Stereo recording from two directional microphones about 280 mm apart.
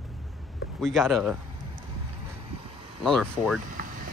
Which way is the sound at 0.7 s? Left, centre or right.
Centre.